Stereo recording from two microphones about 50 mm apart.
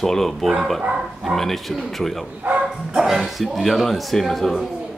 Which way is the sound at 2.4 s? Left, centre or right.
Right.